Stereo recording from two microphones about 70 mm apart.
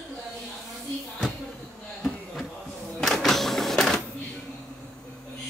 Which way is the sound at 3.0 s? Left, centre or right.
Centre.